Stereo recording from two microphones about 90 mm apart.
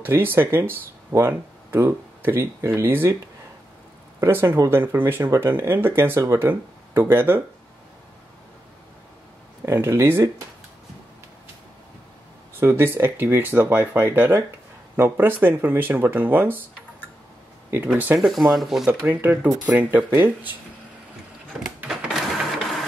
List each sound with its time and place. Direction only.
0.0 s speech: 25° right (ahead or behind)
4.2 s speech: 25° right (ahead or behind)
9.7 s speech: 30° right (ahead or behind)
12.5 s speech: 25° right (ahead or behind)
17.8 s speech: 20° right (ahead or behind)
18.2 s speech: centre (ahead or behind)
18.9 s speech: 20° right (ahead or behind)
21.8 s printer: 5° right (ahead or behind)